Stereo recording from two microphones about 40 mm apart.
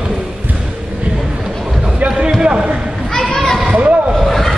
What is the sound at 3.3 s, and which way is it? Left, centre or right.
Children playing, centre.